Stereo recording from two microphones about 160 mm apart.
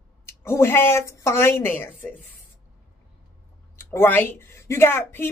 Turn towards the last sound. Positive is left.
turn(degrees=15)  # may be behind; listen again after turning